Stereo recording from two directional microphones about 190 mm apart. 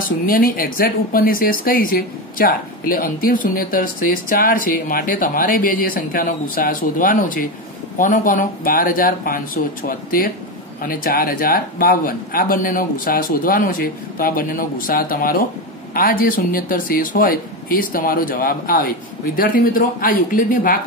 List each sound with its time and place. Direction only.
0.0 s speech: 50° left (ahead or behind)